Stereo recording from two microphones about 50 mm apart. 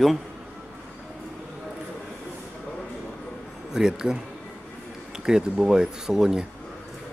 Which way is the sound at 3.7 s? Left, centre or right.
Centre.